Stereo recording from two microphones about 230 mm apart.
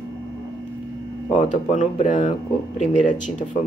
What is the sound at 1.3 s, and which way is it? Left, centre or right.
Speech, left.